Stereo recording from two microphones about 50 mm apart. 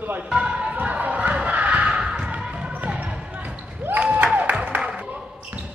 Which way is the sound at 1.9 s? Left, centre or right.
Centre.